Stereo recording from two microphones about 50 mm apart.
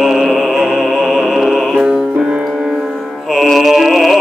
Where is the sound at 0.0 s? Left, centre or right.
Centre.